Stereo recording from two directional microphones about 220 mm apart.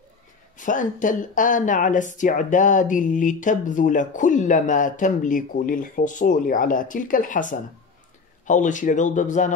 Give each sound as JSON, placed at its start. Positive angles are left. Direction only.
{"t": 0.6, "sound": "speech", "side_deg": 35}